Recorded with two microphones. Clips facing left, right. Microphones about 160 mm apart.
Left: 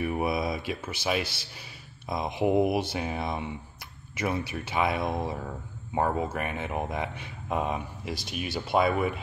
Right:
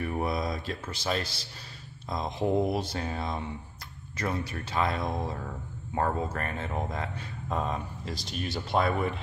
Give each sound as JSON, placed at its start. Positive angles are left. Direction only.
{"t": 0.0, "sound": "speech", "side_deg": 10}